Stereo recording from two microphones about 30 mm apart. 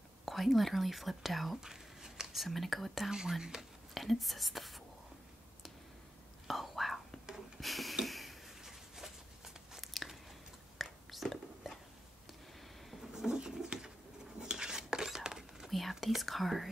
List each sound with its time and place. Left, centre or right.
0.2 s speech: centre
1.6 s a sound: centre
2.3 s speech: centre
3.1 s speech: centre
3.9 s speech: centre
6.4 s whispering: centre
7.6 s a sound: centre
8.0 s tick-tock: centre
8.6 s a sound: centre
9.8 s biting: centre
10.8 s whispering: centre
13.1 s a sound: right
14.4 s cutlery: right
15.9 s speech: centre